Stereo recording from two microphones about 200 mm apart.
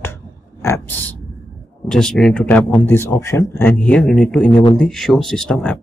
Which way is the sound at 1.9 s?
5° left (ahead or behind).